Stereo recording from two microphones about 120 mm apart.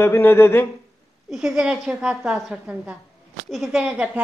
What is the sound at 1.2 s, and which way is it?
A woman's voice, 5° right (ahead or behind).